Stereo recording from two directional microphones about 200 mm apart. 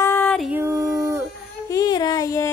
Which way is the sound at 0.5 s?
10° right (ahead or behind).